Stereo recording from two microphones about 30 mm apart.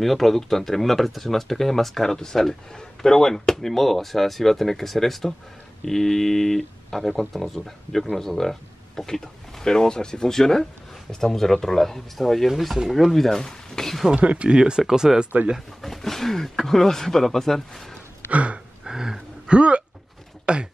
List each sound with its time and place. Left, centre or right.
0.0 s speech: centre
14.1 s speech: right
14.5 s speech: right
15.1 s speech: centre
15.8 s speech: centre
18.3 s a sound: right
18.9 s a sound: right
19.4 s speech: right